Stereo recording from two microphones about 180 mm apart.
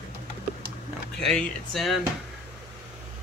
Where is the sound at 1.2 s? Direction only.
Centre (ahead or behind).